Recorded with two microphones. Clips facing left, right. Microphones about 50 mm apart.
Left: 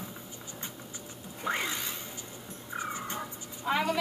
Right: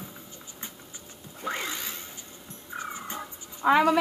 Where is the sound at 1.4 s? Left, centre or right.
Centre.